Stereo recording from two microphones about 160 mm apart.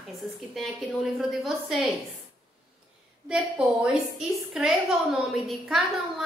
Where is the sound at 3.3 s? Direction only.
5° right (ahead or behind).